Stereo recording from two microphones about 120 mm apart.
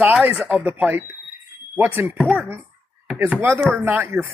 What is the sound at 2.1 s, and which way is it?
Speech, centre (ahead or behind).